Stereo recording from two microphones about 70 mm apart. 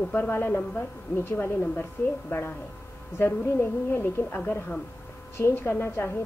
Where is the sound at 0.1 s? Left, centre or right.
Left.